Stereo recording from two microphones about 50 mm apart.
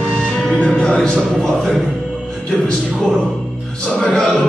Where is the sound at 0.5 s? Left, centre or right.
Centre.